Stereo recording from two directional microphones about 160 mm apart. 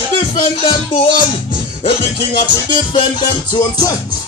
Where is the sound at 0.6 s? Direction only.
30° left (ahead or behind).